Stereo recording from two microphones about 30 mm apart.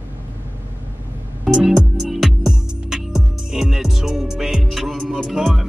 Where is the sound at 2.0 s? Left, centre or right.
Centre.